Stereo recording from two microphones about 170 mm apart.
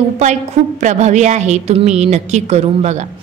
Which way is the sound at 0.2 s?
45° right (ahead or behind).